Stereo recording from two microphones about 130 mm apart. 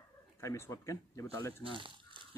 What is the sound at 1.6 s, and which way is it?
Speech, 40° right (ahead or behind).